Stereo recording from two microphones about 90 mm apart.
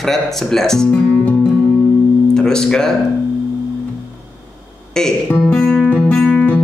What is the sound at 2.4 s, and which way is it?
Speech, 5° left (ahead or behind).